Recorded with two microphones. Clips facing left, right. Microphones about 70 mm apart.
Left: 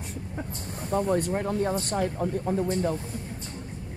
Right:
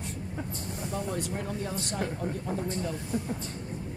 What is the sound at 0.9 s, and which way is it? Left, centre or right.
Speech, left.